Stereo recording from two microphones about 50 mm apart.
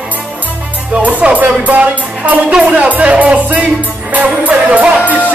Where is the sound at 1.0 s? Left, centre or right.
Right.